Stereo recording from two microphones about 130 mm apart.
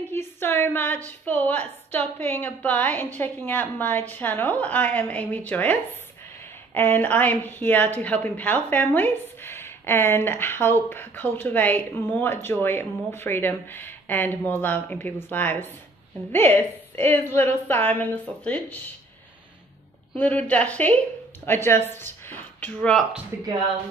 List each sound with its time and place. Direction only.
0.1 s a woman's voice: 15° left (ahead or behind)
20.2 s a woman's voice: 10° left (ahead or behind)
23.3 s speech: 15° right (ahead or behind)